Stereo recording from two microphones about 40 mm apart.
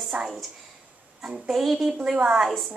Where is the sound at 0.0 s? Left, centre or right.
Centre.